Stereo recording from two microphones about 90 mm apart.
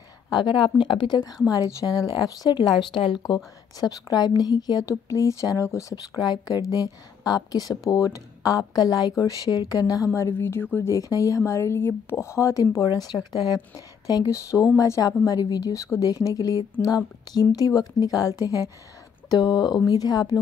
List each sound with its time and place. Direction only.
0.3 s speech: 60° left (ahead or behind)
1.5 s speech: 40° left (ahead or behind); by 3.2 s 70° left (ahead or behind)
3.8 s speech: 50° left (ahead or behind)
10.1 s a woman's voice: 30° left (ahead or behind)
10.9 s a woman's voice: 40° left (ahead or behind)